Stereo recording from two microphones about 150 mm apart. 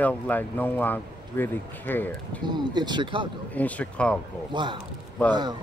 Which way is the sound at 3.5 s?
10° left (ahead or behind).